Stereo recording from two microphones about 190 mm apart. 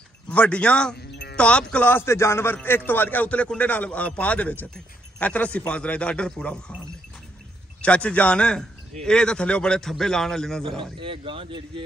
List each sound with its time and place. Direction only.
0.3 s a man's voice: 5° left (ahead or behind)
0.9 s music: 60° left (ahead or behind)
1.3 s a man's voice: 5° left (ahead or behind)
7.8 s a man's voice: 5° left (ahead or behind)
10.8 s speech: 25° right (ahead or behind)